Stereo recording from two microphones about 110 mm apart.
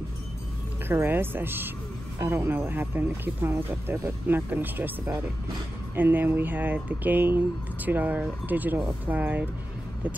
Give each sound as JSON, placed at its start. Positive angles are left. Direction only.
{"t": 0.8, "sound": "speech", "side_deg": -20}